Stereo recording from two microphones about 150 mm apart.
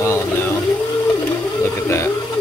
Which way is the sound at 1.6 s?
20° left (ahead or behind).